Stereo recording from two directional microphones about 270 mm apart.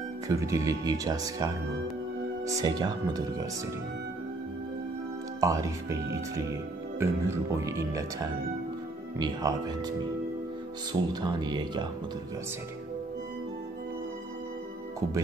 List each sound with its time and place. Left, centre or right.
0.3 s speech: centre
5.4 s speech: centre
10.9 s speech: centre